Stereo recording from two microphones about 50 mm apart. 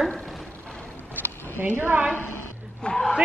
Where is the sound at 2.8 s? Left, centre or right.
Centre.